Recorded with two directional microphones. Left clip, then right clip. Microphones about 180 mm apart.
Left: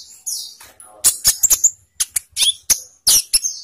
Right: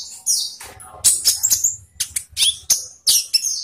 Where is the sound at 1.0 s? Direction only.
40° left (ahead or behind).